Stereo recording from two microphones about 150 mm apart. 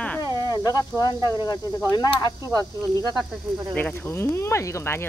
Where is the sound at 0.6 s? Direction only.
25° left (ahead or behind).